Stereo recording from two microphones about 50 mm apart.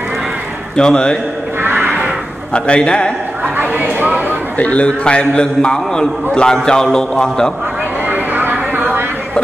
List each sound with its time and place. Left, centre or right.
0.7 s a man's voice: centre
1.6 s a sound: right
2.5 s a man's voice: left
3.5 s speech: right
4.6 s a man's voice: left
8.1 s a sound: right